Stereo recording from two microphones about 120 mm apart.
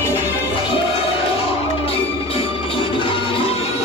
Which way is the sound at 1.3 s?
50° left (ahead or behind).